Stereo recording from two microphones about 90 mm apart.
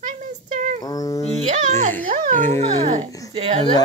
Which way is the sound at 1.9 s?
20° left (ahead or behind).